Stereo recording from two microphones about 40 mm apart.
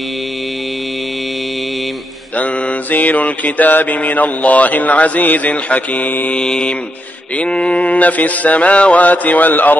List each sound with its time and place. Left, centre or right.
2.3 s mantra: left
6.3 s mantra: centre
7.3 s mantra: left